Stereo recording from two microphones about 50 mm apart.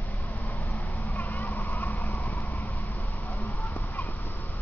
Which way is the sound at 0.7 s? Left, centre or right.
Left.